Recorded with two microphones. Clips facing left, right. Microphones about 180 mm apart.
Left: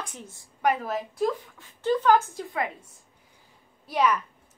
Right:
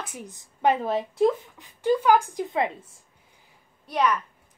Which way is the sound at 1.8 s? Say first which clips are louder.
Right 1 dB; 10° right (ahead or behind).